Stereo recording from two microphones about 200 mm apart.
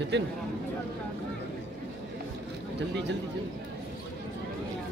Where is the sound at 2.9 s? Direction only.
60° right (ahead or behind).